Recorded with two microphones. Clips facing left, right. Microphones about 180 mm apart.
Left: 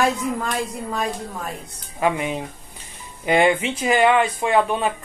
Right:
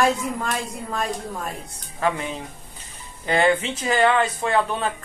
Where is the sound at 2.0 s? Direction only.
15° left (ahead or behind).